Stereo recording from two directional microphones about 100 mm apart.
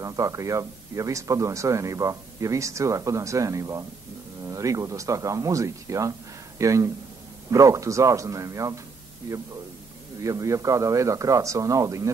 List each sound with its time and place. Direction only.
0.0 s speech: 35° right (ahead or behind)